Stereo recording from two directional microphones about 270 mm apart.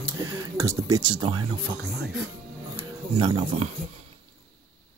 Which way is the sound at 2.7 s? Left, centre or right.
Centre.